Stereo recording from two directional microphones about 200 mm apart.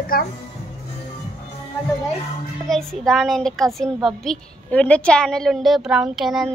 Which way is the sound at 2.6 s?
Centre (ahead or behind).